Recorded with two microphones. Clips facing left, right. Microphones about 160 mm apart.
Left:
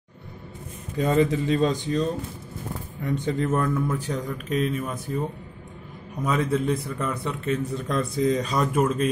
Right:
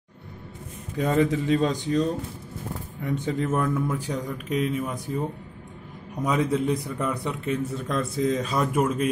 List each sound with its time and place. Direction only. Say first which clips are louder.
0.9 s speech: left 1 dB; 5° right (ahead or behind)
6.2 s speech: even; 15° right (ahead or behind)
7.9 s speech: left 2 dB; centre (ahead or behind)